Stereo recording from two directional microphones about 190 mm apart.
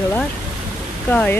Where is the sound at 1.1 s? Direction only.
10° left (ahead or behind).